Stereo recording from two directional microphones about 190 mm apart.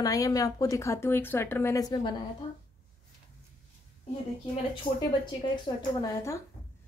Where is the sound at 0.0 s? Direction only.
20° left (ahead or behind).